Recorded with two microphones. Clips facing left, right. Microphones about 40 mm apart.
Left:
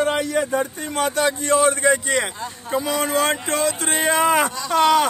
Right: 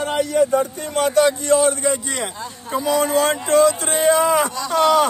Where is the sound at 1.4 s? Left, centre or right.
Left.